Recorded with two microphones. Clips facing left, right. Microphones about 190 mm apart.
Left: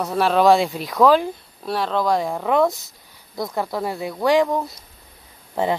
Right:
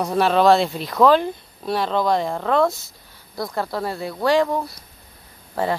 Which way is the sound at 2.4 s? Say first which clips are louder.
Left 1 dB; 15° left (ahead or behind).